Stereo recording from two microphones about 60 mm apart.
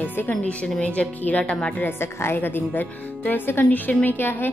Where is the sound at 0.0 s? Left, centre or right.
Left.